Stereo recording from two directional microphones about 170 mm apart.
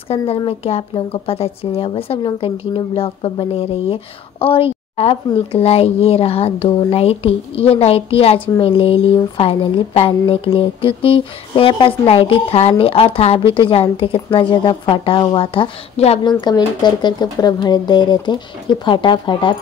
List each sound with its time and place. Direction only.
0.5 s a woman's voice: 35° left (ahead or behind)